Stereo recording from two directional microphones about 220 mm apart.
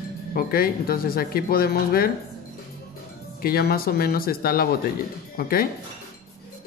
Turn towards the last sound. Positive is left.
turn(degrees=40)  # may be behind; listen again after turning